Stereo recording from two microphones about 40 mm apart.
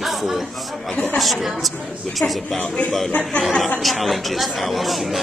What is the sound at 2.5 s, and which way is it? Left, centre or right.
Speech, left.